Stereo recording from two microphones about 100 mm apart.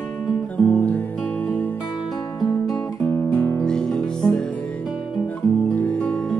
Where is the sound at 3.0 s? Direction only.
15° left (ahead or behind).